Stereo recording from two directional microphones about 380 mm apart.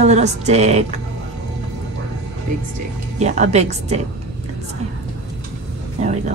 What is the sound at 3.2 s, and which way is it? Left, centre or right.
Speech, centre.